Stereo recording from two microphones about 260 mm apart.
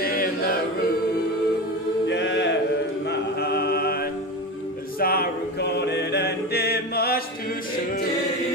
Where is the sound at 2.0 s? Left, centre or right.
Left.